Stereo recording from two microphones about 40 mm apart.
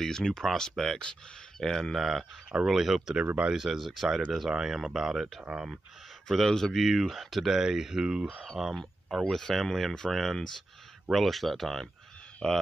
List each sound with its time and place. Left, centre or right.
0.0 s speech: centre
2.0 s speech: centre
6.2 s speech: centre
8.3 s speech: centre
12.4 s speech: centre